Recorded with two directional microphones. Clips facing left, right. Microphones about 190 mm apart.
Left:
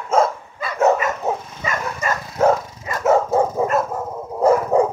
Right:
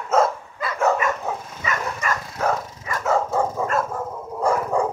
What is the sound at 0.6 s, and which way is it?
Dog, 20° left (ahead or behind).